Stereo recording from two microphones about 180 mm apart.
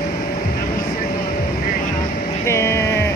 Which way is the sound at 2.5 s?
15° left (ahead or behind).